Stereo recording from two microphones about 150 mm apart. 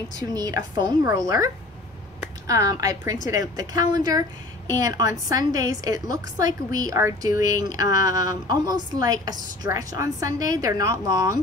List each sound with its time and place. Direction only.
0.1 s a woman's voice: 25° right (ahead or behind)